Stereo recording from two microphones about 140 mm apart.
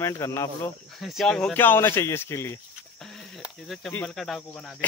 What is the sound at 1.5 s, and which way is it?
Speech, 15° left (ahead or behind).